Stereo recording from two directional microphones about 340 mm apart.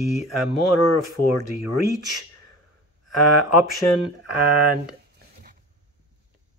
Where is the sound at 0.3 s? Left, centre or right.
Left.